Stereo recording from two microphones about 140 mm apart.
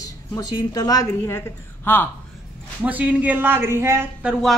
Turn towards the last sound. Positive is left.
turn(degrees=-5)  # may be behind; listen again after turning